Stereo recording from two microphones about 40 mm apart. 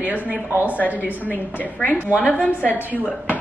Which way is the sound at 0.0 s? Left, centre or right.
Right.